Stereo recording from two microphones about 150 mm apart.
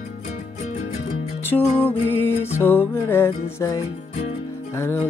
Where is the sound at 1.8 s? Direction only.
10° left (ahead or behind).